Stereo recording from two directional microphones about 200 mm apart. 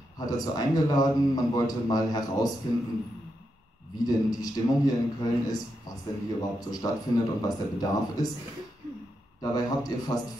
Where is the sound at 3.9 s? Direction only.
20° left (ahead or behind).